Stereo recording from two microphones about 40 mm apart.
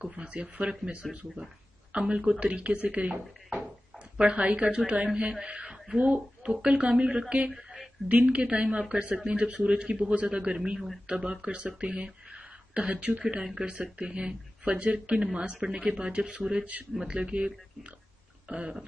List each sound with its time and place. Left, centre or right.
0.0 s a woman's voice: right
4.6 s a woman's voice: right
4.9 s a woman's voice: right
7.5 s a sound: centre
8.1 s a woman's voice: right
9.5 s a woman's voice: right
16.9 s speech: centre
17.2 s a woman's voice: right
18.5 s a woman's voice: right